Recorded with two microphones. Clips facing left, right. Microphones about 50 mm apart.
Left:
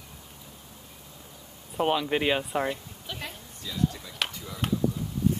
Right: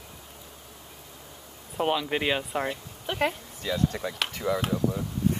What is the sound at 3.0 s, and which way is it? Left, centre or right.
Speech, right.